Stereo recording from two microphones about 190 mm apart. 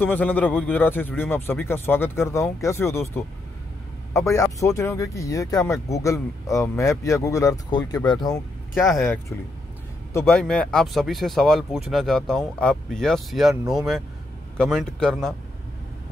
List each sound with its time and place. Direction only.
0.0 s speech: 10° left (ahead or behind)
8.7 s speech: centre (ahead or behind)
10.1 s speech: 5° left (ahead or behind)